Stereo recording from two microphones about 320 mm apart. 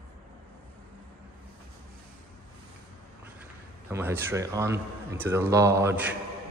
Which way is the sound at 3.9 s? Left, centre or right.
Centre.